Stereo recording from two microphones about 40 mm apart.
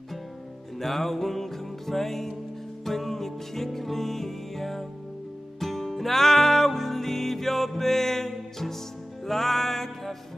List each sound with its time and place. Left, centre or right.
0.7 s music: centre